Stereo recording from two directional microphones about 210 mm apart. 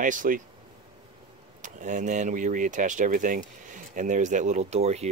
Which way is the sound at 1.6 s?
35° right (ahead or behind).